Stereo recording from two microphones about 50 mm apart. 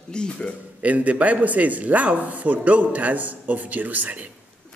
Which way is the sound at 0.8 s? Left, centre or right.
Right.